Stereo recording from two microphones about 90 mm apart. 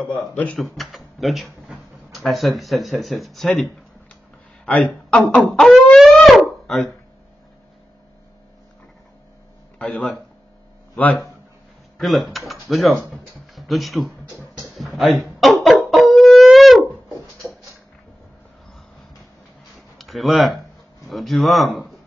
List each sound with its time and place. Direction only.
0.0 s speech: 15° left (ahead or behind)
0.6 s speech: centre (ahead or behind)
4.6 s speech: 10° left (ahead or behind)
5.5 s speech: centre (ahead or behind)
5.9 s a sound: centre (ahead or behind)
9.8 s speech: 10° left (ahead or behind)
12.0 s speech: centre (ahead or behind)
14.6 s howl: centre (ahead or behind)
17.4 s a sound: 15° right (ahead or behind)
20.0 s a man's voice: centre (ahead or behind)